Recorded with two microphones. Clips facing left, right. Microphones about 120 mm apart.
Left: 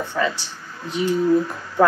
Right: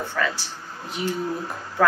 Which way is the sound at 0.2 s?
20° left (ahead or behind).